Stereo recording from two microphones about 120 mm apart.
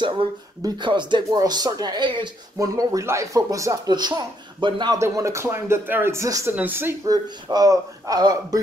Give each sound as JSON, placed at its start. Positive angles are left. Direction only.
{"t": 0.7, "sound": "a man's voice", "side_deg": -40}
{"t": 4.9, "sound": "speech", "side_deg": -25}
{"t": 7.1, "sound": "a man's voice", "side_deg": -30}